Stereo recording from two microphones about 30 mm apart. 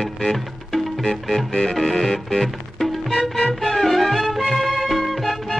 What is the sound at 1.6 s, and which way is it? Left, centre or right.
Music, centre.